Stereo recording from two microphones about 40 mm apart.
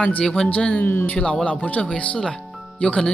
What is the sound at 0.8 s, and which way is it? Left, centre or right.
Speech, left.